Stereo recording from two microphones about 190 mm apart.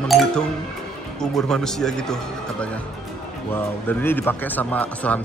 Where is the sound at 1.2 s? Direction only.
5° left (ahead or behind).